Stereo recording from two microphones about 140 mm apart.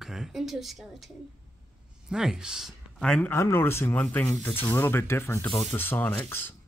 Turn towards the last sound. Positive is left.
turn(degrees=15)  # may be behind; listen again after turning